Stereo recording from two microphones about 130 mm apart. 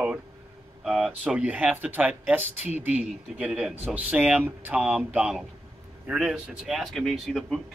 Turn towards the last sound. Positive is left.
turn(degrees=0)  # may be behind; listen again after turning